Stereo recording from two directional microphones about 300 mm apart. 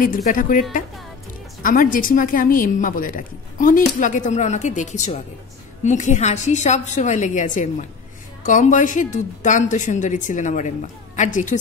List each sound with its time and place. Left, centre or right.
0.0 s a woman's voice: left